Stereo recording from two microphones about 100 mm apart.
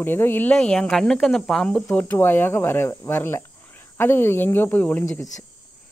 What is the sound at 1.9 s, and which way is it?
Speech, 20° left (ahead or behind).